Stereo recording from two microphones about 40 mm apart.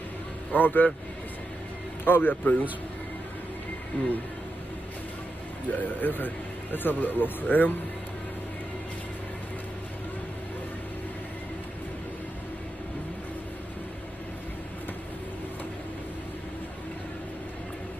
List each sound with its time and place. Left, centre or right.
0.5 s speech: left
2.0 s speech: left
5.7 s speech: left